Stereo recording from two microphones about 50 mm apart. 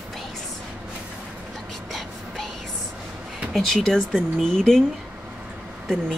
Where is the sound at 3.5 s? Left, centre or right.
Centre.